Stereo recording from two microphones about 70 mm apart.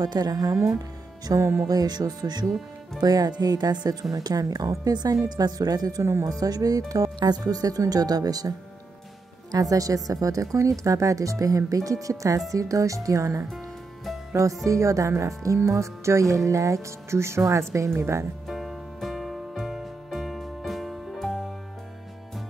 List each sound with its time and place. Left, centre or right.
0.0 s speech: right
0.7 s music: right
1.7 s speech: right
18.5 s music: centre